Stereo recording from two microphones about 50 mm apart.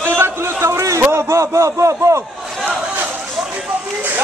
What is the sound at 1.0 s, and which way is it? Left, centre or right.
A man's voice, right.